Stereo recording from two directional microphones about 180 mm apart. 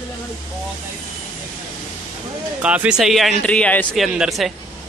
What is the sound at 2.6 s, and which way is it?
A man's voice, 5° right (ahead or behind).